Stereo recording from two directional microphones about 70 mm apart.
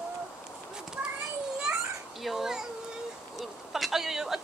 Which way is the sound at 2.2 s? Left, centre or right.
Centre.